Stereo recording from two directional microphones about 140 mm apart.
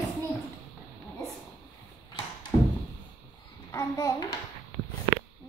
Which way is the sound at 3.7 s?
25° left (ahead or behind).